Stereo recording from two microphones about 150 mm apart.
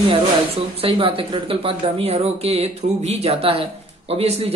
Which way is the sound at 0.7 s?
40° right (ahead or behind).